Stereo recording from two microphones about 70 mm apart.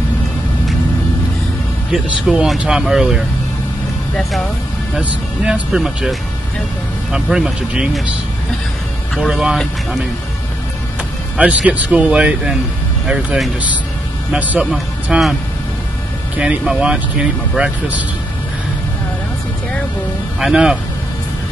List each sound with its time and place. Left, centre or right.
2.0 s speech: centre
9.1 s speech: centre
11.3 s speech: centre
14.4 s speech: centre
16.3 s speech: centre
20.3 s speech: centre